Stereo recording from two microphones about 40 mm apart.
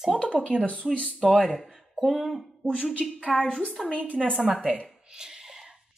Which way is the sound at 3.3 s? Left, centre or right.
Centre.